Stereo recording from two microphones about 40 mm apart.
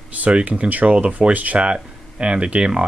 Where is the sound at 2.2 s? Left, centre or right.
Right.